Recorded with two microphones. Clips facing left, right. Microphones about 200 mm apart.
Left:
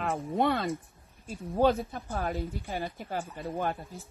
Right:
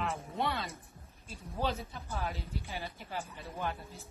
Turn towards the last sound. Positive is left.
turn(degrees=50)  # may be behind; listen again after turning